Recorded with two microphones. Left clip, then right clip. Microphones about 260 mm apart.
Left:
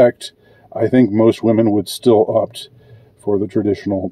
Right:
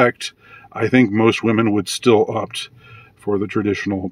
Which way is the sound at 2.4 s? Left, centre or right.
Left.